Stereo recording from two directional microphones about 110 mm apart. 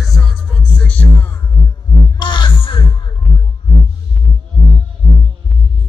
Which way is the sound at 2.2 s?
45° left (ahead or behind).